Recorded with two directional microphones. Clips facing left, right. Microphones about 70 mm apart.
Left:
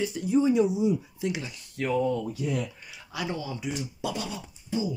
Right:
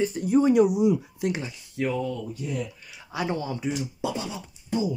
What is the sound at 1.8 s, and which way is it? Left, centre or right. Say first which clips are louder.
Speech: right 3 dB; centre.